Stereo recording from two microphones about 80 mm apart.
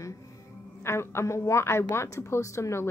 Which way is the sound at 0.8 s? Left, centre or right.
Left.